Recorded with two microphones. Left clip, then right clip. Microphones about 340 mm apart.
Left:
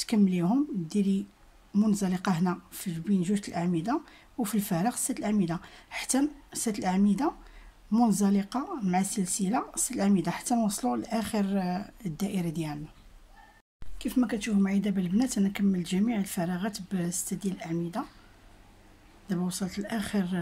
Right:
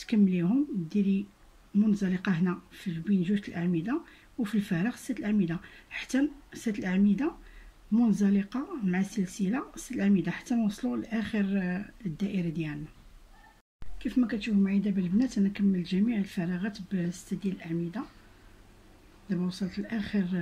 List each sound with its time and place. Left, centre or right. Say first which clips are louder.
0.0 s speech: left 1 dB; centre
13.9 s speech: left 1 dB; centre
19.9 s speech: left 1 dB; centre